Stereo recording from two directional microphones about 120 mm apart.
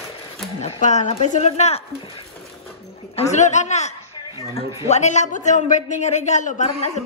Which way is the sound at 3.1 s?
70° left (ahead or behind).